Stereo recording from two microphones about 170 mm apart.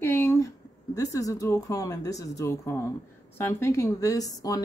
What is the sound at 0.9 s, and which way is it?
Speech, 20° left (ahead or behind).